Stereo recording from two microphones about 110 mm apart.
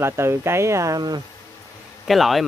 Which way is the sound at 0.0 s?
25° right (ahead or behind).